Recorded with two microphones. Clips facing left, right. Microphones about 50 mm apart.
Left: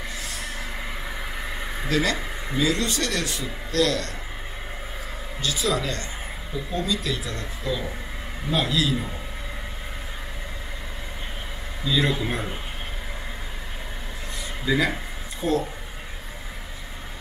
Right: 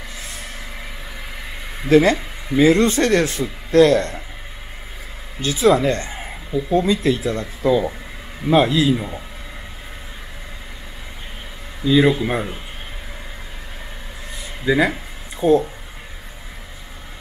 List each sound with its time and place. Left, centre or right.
1.9 s speech: right
5.4 s a man's voice: right
11.8 s a man's voice: centre
14.7 s a man's voice: right